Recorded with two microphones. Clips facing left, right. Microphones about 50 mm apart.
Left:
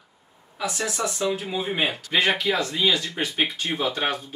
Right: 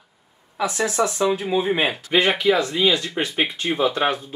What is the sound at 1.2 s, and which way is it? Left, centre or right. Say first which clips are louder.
Speech: right 6 dB; right.